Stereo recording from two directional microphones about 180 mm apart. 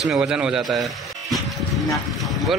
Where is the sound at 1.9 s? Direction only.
Centre (ahead or behind).